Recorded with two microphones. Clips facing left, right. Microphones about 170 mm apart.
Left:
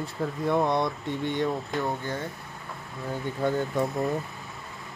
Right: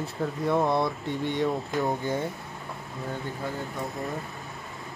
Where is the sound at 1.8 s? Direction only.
15° right (ahead or behind).